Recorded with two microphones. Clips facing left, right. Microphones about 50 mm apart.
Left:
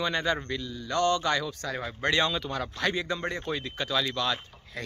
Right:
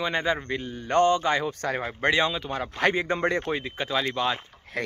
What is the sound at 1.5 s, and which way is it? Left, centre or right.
Speech, right.